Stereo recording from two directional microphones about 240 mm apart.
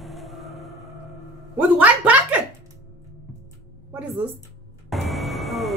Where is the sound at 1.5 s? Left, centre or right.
Centre.